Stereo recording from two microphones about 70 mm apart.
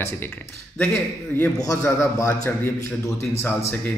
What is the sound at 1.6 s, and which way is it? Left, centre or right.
A man's voice, left.